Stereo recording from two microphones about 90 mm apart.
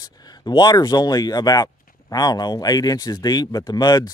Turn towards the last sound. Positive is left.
turn(degrees=50)  # may be behind; listen again after turning